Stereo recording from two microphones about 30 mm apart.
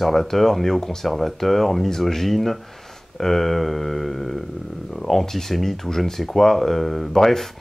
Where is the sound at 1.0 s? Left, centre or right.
Centre.